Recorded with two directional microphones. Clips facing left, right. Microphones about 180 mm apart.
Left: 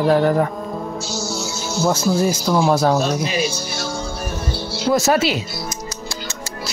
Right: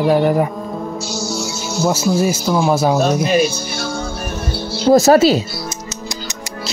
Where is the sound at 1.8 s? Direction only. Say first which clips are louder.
Right 2 dB; 5° right (ahead or behind).